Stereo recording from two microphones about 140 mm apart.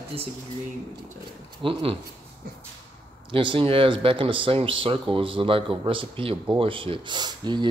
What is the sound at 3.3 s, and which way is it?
Speech, 40° right (ahead or behind).